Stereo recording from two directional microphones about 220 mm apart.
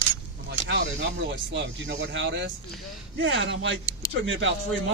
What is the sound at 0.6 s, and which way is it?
A man's voice, 50° right (ahead or behind).